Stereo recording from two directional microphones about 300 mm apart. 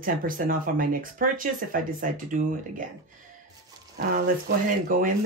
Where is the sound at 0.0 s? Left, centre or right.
Right.